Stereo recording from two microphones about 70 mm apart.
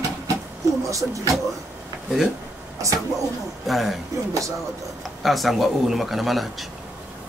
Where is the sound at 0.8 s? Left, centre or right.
Right.